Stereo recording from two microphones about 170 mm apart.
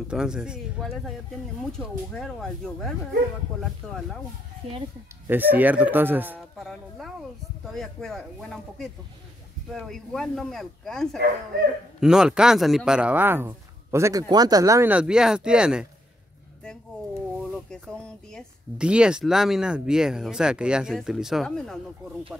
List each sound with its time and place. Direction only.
0.1 s speech: 5° right (ahead or behind)
4.6 s speech: 35° right (ahead or behind)
5.2 s speech: 10° right (ahead or behind)
6.6 s speech: centre (ahead or behind)
17.4 s speech: 5° left (ahead or behind)